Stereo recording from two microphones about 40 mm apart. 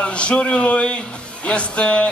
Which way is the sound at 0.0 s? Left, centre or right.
Left.